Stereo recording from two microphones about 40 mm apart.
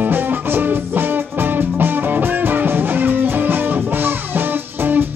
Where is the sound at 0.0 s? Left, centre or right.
Right.